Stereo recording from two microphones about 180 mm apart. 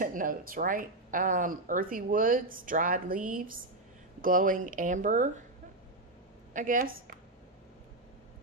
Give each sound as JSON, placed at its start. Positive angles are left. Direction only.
{"t": 0.0, "sound": "speech", "side_deg": -50}
{"t": 6.5, "sound": "speech", "side_deg": -45}